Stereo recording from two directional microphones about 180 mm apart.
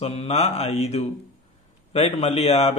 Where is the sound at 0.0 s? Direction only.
35° left (ahead or behind).